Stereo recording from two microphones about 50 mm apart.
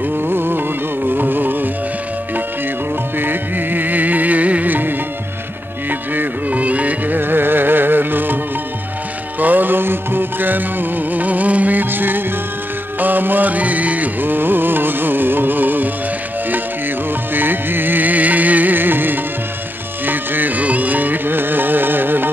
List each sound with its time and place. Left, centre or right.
0.3 s music: right
3.2 s music: right
7.2 s music: right
9.4 s music: right
17.3 s music: right